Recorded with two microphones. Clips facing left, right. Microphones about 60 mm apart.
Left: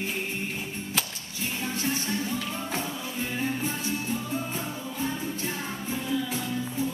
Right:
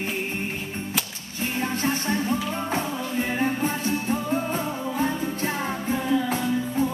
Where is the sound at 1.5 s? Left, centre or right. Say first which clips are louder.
Right 5 dB; right.